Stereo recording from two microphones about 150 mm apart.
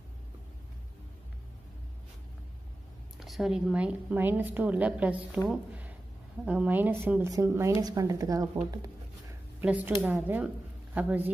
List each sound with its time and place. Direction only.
3.2 s a woman's voice: centre (ahead or behind)
5.5 s a sound: 10° right (ahead or behind)
6.4 s a woman's voice: 10° right (ahead or behind)
9.6 s a woman's voice: 10° right (ahead or behind)